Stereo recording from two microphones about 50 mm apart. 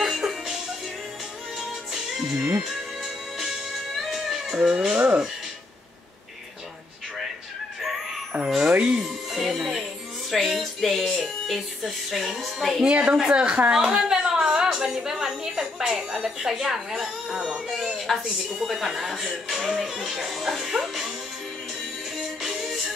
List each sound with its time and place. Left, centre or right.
0.0 s music: centre
1.6 s music: centre
4.6 s speech: right
8.5 s music: right
8.9 s music: centre
11.4 s a woman's voice: centre
12.8 s speech: centre
13.7 s a woman's voice: centre
17.6 s a woman's voice: centre
22.1 s music: centre